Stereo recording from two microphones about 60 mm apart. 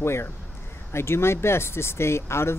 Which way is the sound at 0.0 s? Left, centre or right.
Left.